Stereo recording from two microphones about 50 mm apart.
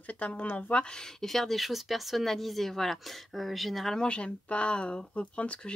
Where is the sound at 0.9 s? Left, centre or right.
Centre.